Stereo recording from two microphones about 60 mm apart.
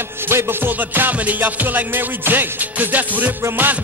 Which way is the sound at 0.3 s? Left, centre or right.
Right.